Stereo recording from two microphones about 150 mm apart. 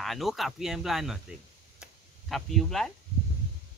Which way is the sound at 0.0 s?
Centre (ahead or behind).